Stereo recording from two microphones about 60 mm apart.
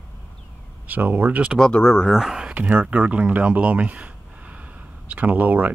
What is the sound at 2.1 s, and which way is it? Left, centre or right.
Speech, centre.